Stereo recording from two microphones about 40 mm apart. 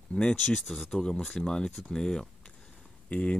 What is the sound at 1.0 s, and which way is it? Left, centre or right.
Speech, centre.